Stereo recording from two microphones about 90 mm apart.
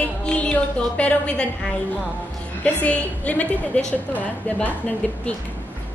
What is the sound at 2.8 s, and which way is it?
A woman's voice, 15° left (ahead or behind).